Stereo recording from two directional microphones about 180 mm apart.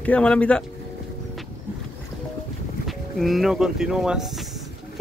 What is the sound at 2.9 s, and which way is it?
Speech, centre (ahead or behind).